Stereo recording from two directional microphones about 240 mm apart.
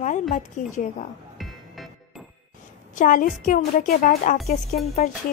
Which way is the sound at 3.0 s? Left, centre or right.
Left.